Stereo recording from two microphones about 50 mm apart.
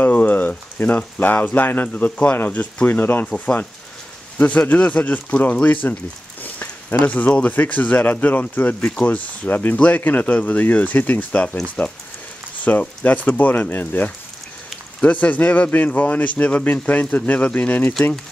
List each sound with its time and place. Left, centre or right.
0.0 s a sound: left
1.2 s speech: left
2.3 s speech: left
3.3 s speech: left
4.4 s speech: left
9.5 s speech: left